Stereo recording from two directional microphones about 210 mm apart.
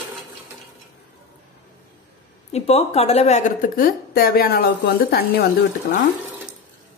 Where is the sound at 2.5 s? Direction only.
30° left (ahead or behind); by 5.5 s 45° left (ahead or behind).